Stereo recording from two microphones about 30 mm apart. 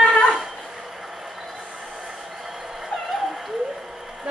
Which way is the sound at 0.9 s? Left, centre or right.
Centre.